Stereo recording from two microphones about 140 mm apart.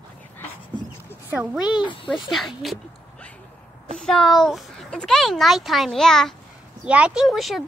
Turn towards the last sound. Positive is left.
turn(degrees=0)  # may be behind; listen again after turning